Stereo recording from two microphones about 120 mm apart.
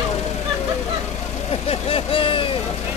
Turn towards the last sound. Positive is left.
turn(degrees=45)  # may be behind; listen again after turning